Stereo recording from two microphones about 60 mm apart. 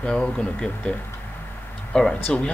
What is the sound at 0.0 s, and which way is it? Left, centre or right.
Speech, centre.